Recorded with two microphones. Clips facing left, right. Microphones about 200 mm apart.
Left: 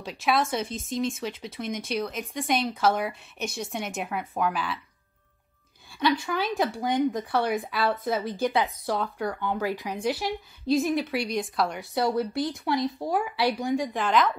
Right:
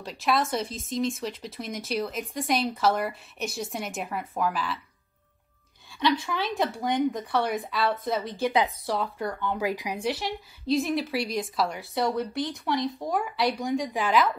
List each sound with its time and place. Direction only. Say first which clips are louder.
0.0 s speech: left 1 dB; centre (ahead or behind)
5.9 s speech: left 1 dB; centre (ahead or behind)
9.6 s speech: even; 15° right (ahead or behind)
10.0 s speech: left 3 dB; centre (ahead or behind)